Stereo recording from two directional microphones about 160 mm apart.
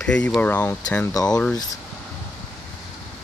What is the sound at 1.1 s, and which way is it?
Speech, 25° left (ahead or behind).